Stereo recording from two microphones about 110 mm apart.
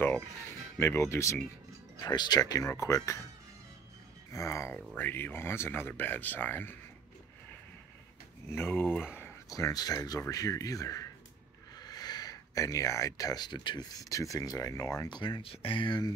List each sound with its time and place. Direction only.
0.7 s speech: 25° left (ahead or behind)
2.0 s speech: 40° left (ahead or behind)
4.3 s speech: 30° left (ahead or behind)
8.5 s speech: 20° left (ahead or behind)
8.8 s speech: 5° right (ahead or behind)
9.5 s speech: 30° left (ahead or behind)
15.0 s speech: 45° left (ahead or behind)
15.4 s speech: 55° left (ahead or behind)